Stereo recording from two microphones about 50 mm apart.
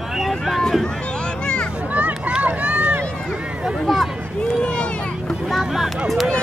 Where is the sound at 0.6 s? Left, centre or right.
Centre.